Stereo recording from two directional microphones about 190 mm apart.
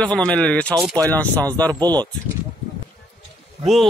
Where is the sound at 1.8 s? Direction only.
20° right (ahead or behind).